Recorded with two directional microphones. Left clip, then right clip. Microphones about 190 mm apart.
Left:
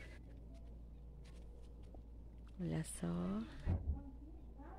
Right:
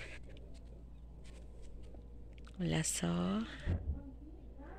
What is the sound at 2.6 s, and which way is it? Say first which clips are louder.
Speech: right 8 dB; 5° right (ahead or behind).